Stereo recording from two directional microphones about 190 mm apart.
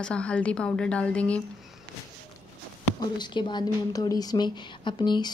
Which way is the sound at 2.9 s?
25° left (ahead or behind).